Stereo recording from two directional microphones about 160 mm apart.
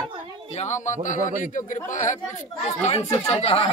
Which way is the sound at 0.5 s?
50° left (ahead or behind).